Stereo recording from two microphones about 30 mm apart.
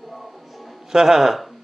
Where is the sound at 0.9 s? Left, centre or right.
Centre.